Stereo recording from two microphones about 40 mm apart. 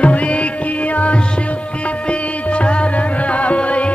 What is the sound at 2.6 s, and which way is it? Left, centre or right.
Music, left.